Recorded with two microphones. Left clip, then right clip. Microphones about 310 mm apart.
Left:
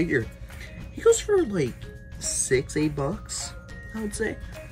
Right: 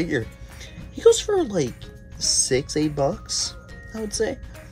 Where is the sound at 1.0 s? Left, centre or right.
Right.